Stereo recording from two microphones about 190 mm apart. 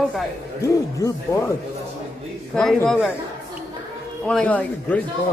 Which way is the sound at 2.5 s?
5° left (ahead or behind).